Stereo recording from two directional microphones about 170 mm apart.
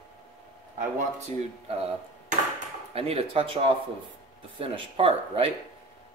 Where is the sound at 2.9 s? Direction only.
35° right (ahead or behind).